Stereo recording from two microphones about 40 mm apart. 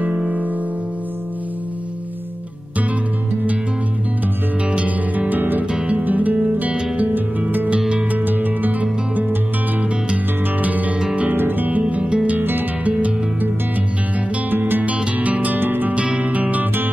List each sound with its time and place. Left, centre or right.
4.6 s music: right
5.3 s music: right
8.1 s music: right
10.6 s music: right
11.3 s music: right
11.9 s music: right
12.4 s music: right
12.8 s music: right
14.5 s music: right
14.9 s music: right
15.6 s music: right
16.2 s music: right